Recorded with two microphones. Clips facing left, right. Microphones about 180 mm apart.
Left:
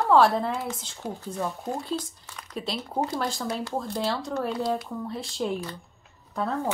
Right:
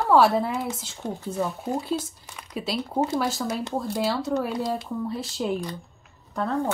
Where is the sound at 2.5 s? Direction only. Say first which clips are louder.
Right 3 dB; 5° right (ahead or behind).